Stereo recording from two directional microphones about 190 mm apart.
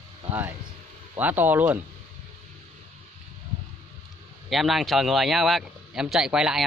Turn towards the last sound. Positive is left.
turn(degrees=-5)  # may be behind; listen again after turning